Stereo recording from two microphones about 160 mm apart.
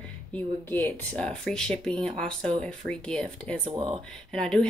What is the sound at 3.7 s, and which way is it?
Speech, 30° right (ahead or behind).